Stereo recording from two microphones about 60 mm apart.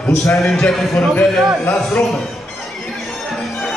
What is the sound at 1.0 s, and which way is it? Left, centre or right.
A man's voice, left.